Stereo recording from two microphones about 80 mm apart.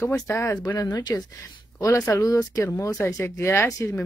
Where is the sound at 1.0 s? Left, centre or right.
Left.